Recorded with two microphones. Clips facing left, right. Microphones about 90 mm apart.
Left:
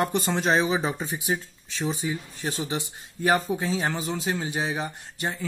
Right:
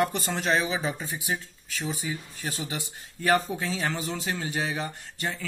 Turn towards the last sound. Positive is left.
turn(degrees=20)  # may be behind; listen again after turning